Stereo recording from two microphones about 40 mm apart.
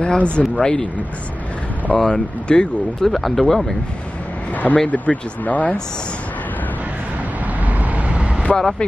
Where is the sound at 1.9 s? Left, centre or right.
Left.